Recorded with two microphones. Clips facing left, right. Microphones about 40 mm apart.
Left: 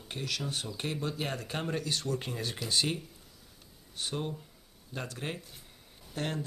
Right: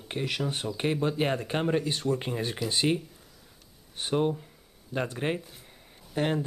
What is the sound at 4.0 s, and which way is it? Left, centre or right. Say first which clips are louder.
Speech: right 9 dB; right.